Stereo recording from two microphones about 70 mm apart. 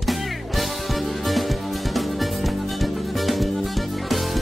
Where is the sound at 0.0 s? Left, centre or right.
Centre.